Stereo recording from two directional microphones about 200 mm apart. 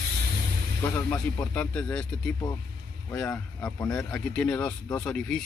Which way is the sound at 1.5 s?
5° left (ahead or behind).